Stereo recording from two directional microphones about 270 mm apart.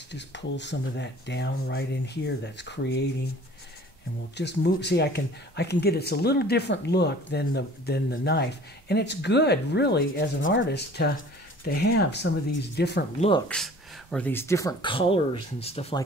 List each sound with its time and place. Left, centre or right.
0.1 s speech: left
4.4 s speech: left
13.5 s speech: centre; by 16.0 s left